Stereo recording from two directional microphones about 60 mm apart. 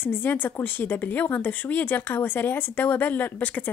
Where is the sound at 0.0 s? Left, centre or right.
Left.